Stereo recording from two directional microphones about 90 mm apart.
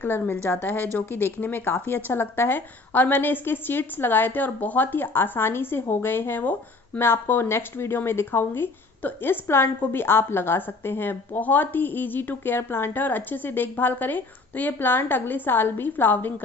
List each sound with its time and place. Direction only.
0.0 s speech: 25° left (ahead or behind)